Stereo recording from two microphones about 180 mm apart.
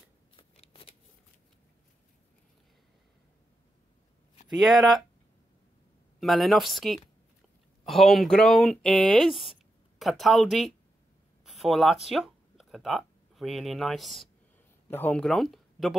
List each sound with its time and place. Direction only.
0.4 s scissors: 30° left (ahead or behind)
4.6 s speech: centre (ahead or behind)
6.1 s speech: centre (ahead or behind)